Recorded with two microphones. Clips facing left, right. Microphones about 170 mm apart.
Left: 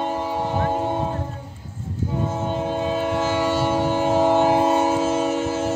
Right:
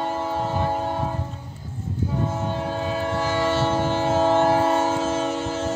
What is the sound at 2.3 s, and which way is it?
Train, 20° left (ahead or behind).